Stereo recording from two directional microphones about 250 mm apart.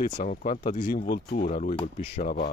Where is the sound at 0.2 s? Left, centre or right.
Left.